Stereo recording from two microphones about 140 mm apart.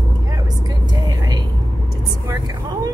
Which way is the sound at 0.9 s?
30° right (ahead or behind).